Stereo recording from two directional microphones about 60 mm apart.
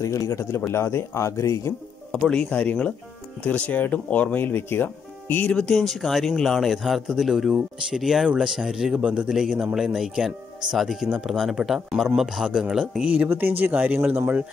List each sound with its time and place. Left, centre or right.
0.0 s a man's voice: left
0.6 s speech: left
2.1 s speech: centre; by 5.5 s left
5.5 s speech: centre
9.0 s a man's voice: right
9.3 s speech: centre
13.0 s a man's voice: right
13.3 s speech: right